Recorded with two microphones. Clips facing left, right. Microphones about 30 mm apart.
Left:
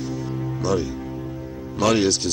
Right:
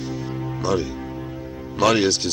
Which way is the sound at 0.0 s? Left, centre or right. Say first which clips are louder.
Even; centre.